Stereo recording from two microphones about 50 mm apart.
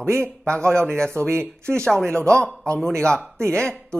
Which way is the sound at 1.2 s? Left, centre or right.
Right.